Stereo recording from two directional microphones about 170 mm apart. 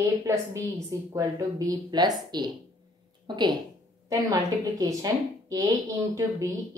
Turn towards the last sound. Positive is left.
turn(degrees=-20)  # may be behind; listen again after turning